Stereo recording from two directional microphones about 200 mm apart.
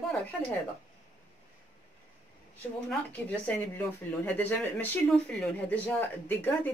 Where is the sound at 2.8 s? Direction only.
10° left (ahead or behind).